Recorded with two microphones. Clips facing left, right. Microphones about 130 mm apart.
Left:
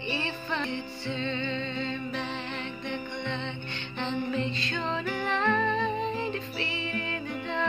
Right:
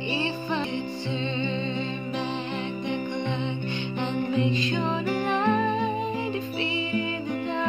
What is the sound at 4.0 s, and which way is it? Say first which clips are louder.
Music: right 4 dB; 15° right (ahead or behind).